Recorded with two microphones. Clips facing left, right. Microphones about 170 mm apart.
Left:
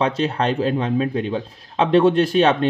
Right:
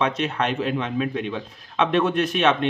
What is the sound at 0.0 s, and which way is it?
A man's voice, 30° left (ahead or behind).